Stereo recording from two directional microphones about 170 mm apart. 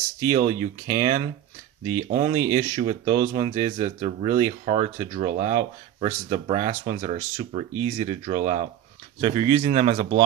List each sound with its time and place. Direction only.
0.2 s speech: 30° right (ahead or behind)